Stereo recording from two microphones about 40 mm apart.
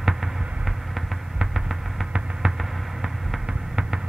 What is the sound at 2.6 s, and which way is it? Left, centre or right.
Hum, centre.